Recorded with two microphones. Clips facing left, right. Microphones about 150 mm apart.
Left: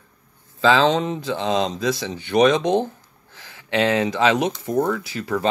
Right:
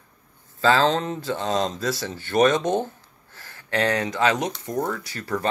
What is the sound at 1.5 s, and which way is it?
Speech, 20° left (ahead or behind).